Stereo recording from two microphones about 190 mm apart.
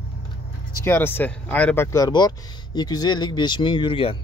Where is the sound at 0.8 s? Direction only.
10° left (ahead or behind).